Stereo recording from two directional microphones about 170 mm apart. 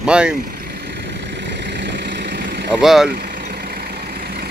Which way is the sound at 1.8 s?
90° right.